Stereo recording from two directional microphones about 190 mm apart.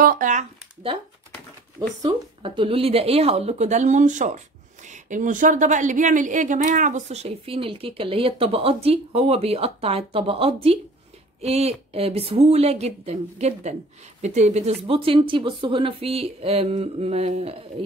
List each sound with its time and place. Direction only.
0.0 s speech: 45° right (ahead or behind)
1.8 s speech: 25° right (ahead or behind)